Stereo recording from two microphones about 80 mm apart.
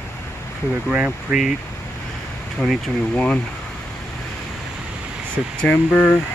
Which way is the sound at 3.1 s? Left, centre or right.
Centre.